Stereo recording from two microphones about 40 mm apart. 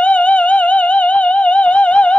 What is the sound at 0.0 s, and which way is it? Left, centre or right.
Music, left.